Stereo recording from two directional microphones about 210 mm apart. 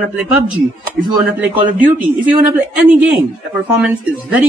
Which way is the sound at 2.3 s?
Centre (ahead or behind).